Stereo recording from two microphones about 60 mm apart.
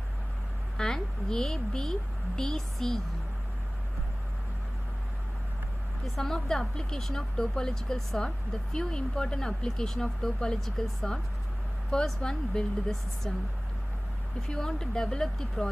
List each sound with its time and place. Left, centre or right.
0.7 s speech: centre
6.0 s speech: centre
14.5 s speech: centre